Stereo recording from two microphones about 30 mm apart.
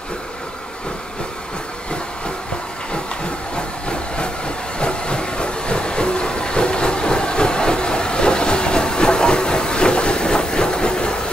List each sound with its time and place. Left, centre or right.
3.5 s train: left